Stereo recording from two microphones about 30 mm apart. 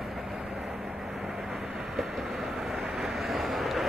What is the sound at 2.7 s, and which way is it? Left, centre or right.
Vehicle, right.